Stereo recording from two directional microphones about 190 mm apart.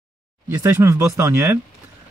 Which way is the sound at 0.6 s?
15° right (ahead or behind).